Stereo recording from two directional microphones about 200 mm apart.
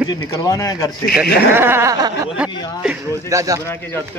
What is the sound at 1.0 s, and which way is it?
Speech, 50° left (ahead or behind).